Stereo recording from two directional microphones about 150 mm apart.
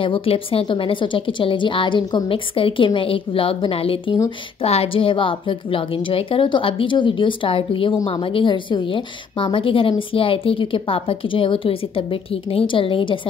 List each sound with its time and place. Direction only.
0.0 s a woman's voice: 35° left (ahead or behind)